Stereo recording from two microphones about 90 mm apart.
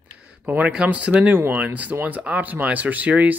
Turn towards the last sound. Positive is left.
turn(degrees=-15)  # may be behind; listen again after turning